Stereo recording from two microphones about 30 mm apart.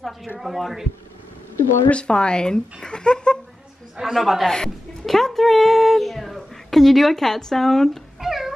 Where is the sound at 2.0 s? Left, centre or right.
Left.